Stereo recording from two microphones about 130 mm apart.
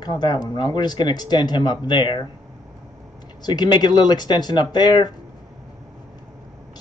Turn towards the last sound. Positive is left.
turn(degrees=35)  # may be behind; listen again after turning